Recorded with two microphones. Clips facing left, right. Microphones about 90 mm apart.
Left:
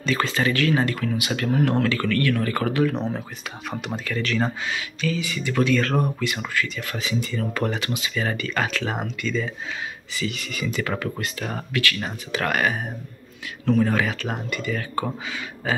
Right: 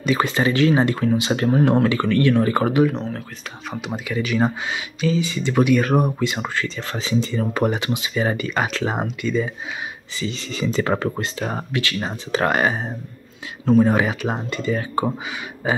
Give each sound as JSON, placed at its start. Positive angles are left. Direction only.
{"t": 0.0, "sound": "speech", "side_deg": -20}
{"t": 3.0, "sound": "speech", "side_deg": 10}
{"t": 3.9, "sound": "speech", "side_deg": -10}